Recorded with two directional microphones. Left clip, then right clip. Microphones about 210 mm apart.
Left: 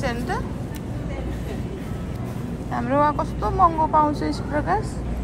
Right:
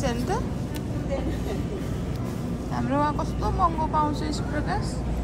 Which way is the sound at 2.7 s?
10° right (ahead or behind).